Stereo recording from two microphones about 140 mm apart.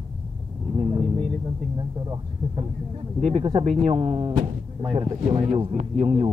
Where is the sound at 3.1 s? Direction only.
45° right (ahead or behind).